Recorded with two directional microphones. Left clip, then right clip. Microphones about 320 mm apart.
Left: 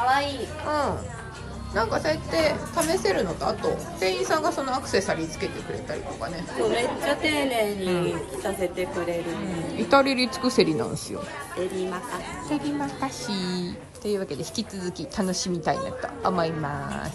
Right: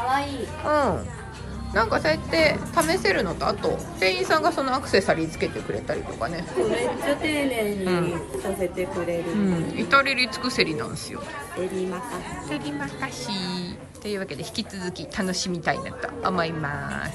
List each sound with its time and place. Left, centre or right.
0.0 s a woman's voice: centre
2.0 s a woman's voice: centre
6.6 s a woman's voice: centre
9.8 s a woman's voice: centre
13.3 s a woman's voice: centre